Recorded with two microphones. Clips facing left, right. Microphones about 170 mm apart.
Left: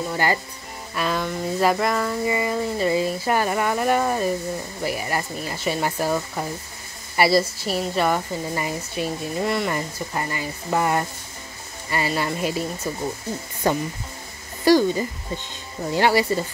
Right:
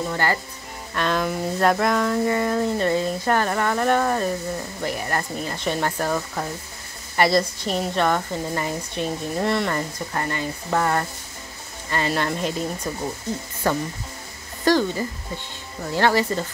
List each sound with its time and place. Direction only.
0.0 s a woman's voice: 10° left (ahead or behind)
12.1 s a woman's voice: 5° left (ahead or behind)